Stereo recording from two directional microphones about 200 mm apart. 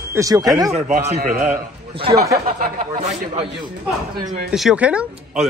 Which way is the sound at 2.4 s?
45° right (ahead or behind).